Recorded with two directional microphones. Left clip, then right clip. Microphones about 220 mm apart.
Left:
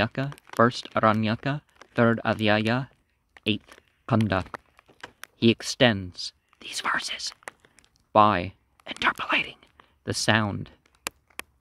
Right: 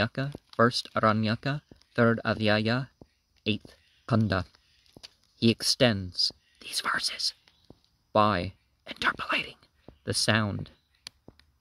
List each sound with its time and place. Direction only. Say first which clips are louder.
0.0 s speech: left 3 dB; 35° right (ahead or behind)
3.4 s a sound: left 3 dB; 35° right (ahead or behind)
5.4 s speech: left 3 dB; 35° right (ahead or behind)